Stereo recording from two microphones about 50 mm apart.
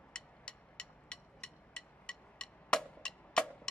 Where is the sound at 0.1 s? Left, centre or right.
Centre.